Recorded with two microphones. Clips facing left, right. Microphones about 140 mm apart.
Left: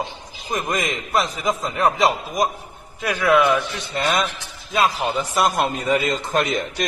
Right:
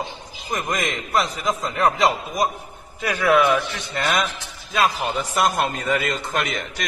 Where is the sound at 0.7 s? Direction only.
Centre (ahead or behind).